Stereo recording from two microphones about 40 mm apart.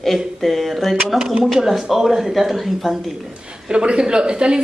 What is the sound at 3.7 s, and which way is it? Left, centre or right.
Speech, right.